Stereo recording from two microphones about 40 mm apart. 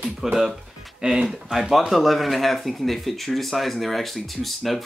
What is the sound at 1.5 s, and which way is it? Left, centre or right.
Speech, centre.